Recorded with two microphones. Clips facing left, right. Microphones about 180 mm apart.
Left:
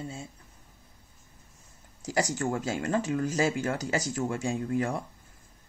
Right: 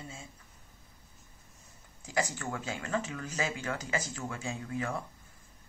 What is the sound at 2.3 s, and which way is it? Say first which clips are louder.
Speech: left 8 dB; 40° left (ahead or behind).